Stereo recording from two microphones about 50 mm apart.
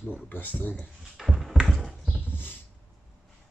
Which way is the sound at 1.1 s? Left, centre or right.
Centre.